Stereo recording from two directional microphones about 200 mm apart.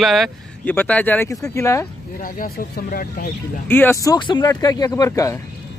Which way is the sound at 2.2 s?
45° left (ahead or behind).